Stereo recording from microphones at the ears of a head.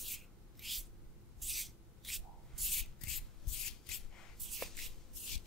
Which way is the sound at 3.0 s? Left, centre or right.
Left.